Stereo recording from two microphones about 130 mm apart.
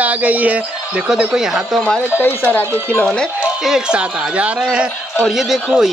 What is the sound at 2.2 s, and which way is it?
Speech, 15° left (ahead or behind).